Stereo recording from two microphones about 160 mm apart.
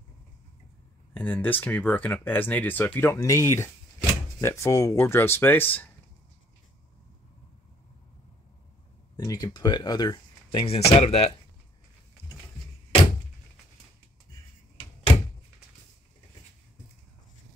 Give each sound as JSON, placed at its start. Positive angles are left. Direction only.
{"t": 1.1, "sound": "speech", "side_deg": 10}
{"t": 9.1, "sound": "speech", "side_deg": 25}